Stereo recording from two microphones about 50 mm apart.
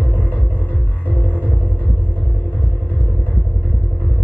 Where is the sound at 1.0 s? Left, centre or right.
Left.